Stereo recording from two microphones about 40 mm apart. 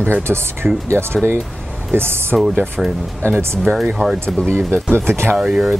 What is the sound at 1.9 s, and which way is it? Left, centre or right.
Speech, right.